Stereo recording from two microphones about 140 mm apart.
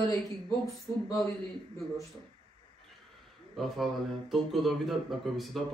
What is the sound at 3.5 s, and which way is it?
Speech, centre (ahead or behind).